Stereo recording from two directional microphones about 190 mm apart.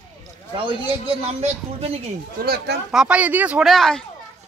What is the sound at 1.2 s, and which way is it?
Speech, 30° right (ahead or behind).